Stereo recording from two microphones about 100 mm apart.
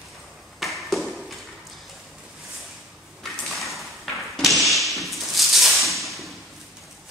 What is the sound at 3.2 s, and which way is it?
Thump, centre (ahead or behind).